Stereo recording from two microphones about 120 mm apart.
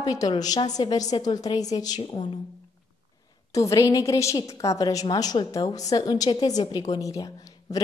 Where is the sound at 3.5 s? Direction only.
25° left (ahead or behind).